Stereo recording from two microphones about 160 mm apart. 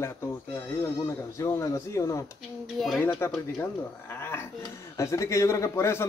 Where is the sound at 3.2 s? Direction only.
15° left (ahead or behind).